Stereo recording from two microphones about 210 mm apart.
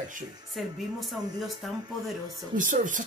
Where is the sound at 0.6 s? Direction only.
Centre (ahead or behind).